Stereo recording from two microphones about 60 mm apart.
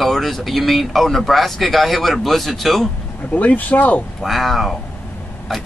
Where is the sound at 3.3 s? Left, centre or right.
Left.